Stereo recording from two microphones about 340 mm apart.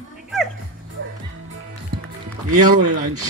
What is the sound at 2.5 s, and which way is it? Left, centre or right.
Speech, right.